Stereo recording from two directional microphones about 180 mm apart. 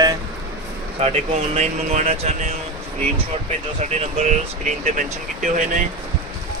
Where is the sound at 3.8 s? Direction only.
40° right (ahead or behind).